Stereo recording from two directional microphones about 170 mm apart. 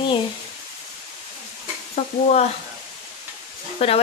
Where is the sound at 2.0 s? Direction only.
35° left (ahead or behind).